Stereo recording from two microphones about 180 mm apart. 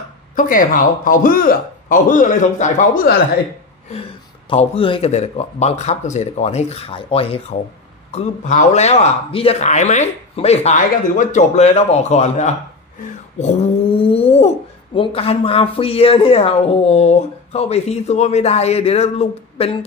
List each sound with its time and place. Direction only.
0.4 s speech: 50° left (ahead or behind)
4.5 s speech: 30° left (ahead or behind)